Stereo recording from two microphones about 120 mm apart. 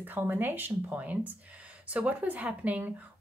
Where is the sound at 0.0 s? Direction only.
15° right (ahead or behind).